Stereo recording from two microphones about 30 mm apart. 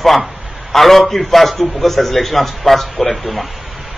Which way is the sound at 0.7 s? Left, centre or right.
Centre.